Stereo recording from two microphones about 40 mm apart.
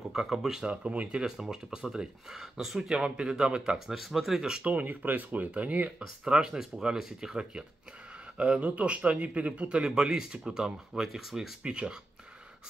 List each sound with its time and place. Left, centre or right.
0.1 s speech: centre
0.7 s speech: right
1.2 s speech: centre
2.3 s speech: centre
4.6 s speech: right
5.9 s speech: right
8.4 s speech: right
9.6 s speech: right; by 11.5 s centre
11.6 s speech: right